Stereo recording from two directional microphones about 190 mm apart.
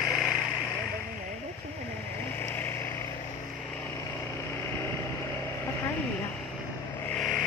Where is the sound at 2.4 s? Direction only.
10° left (ahead or behind).